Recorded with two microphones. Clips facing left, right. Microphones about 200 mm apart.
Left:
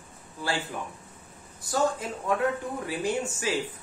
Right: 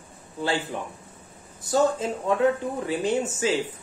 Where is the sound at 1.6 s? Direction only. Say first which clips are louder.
Right 5 dB; 25° right (ahead or behind).